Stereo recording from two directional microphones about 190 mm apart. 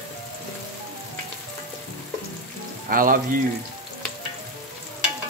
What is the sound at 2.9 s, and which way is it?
Speech, 45° right (ahead or behind).